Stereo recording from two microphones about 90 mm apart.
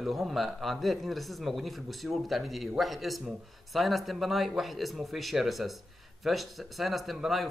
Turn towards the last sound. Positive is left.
turn(degrees=0)  # may be behind; listen again after turning